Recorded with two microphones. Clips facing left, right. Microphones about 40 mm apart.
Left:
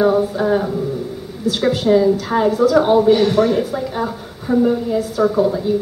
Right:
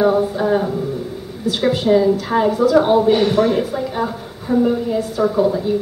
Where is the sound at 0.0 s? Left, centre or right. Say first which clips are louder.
Even; centre.